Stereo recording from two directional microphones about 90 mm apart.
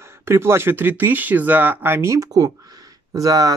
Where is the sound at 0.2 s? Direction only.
30° right (ahead or behind).